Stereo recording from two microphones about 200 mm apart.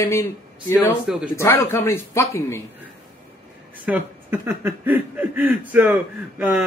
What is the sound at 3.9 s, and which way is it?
Speech, 10° right (ahead or behind).